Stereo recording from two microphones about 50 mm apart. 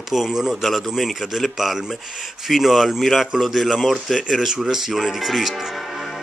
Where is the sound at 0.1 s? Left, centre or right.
Centre.